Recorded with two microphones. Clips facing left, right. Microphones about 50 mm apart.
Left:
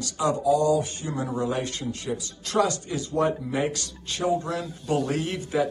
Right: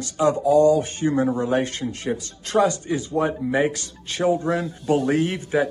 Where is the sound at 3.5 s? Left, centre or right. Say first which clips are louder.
Right 5 dB; right.